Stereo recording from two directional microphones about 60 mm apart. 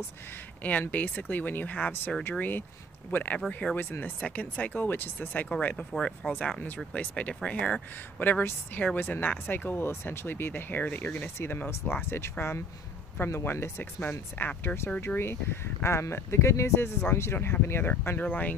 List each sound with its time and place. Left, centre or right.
0.7 s speech: left
6.2 s speech: centre
6.9 s speech: left
8.2 s speech: left
11.1 s speech: left
14.4 s speech: left
15.0 s speech: left
18.2 s speech: left